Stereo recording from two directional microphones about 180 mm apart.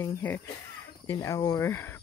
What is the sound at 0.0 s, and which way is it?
Speech, 10° left (ahead or behind).